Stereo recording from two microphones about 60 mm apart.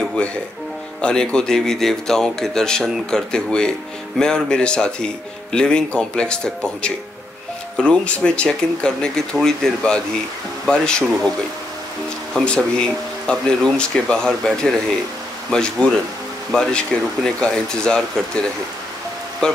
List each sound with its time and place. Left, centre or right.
0.0 s music: centre
1.0 s a man's voice: centre
12.4 s a man's voice: centre
19.4 s speech: centre